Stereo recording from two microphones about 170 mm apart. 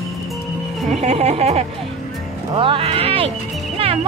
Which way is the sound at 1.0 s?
40° right (ahead or behind).